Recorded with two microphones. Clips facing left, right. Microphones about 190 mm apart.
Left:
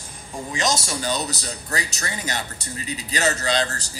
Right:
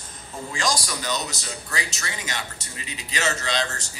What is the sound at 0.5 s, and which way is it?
Speech, 25° left (ahead or behind).